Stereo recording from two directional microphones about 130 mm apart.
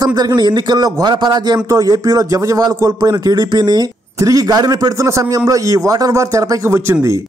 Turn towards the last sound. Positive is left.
turn(degrees=-20)  # may be behind; listen again after turning